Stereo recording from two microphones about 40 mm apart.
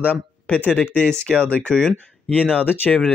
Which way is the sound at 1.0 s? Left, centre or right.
Centre.